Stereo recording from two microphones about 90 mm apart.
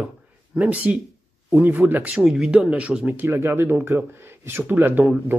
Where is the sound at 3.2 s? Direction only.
30° right (ahead or behind).